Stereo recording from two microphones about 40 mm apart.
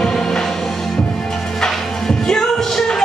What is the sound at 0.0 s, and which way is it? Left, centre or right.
Music, centre.